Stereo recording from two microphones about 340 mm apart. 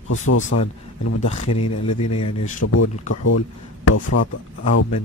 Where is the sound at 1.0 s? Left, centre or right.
Left.